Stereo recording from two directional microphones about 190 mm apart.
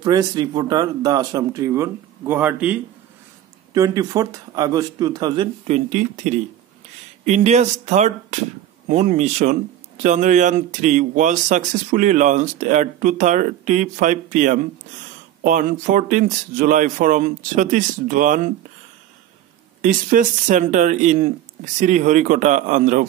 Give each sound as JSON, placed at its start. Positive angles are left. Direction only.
{"t": 0.0, "sound": "speech", "side_deg": -20}
{"t": 3.7, "sound": "speech", "side_deg": -20}
{"t": 5.9, "sound": "speech", "side_deg": -40}
{"t": 19.8, "sound": "speech", "side_deg": -45}